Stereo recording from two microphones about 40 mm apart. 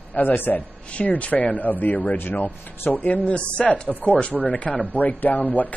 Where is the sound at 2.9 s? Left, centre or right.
Left.